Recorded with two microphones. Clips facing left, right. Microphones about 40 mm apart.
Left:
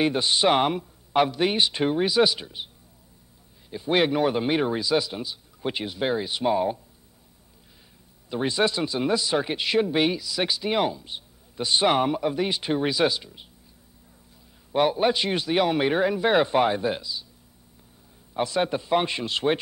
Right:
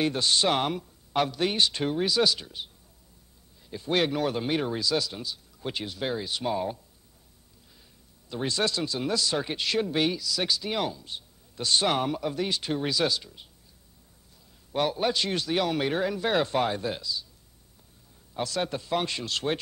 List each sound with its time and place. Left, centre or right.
0.0 s speech: centre
3.7 s speech: centre
8.3 s speech: left
14.7 s speech: centre
18.3 s speech: left